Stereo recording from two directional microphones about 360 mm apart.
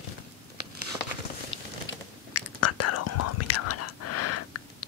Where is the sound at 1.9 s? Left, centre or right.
Left.